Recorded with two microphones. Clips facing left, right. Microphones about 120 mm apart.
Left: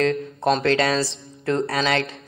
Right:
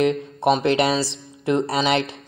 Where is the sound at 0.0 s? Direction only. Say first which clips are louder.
Right 2 dB; 20° right (ahead or behind).